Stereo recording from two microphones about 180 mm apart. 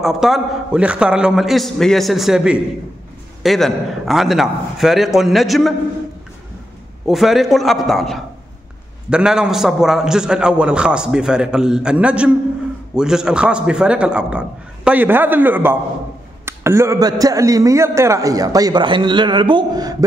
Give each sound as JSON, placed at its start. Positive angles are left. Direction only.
{"t": 0.0, "sound": "a man's voice", "side_deg": 0}
{"t": 7.1, "sound": "a man's voice", "side_deg": 0}